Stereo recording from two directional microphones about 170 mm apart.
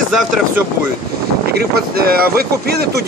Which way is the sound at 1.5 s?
65° right (ahead or behind).